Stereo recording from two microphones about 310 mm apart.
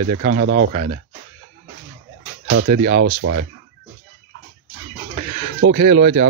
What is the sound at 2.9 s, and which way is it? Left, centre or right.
Speech, right.